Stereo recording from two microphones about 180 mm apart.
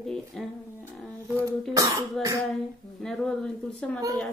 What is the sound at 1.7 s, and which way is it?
Cat, 20° right (ahead or behind).